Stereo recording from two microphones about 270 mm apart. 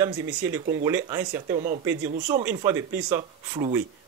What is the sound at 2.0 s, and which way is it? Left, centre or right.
Speech, right.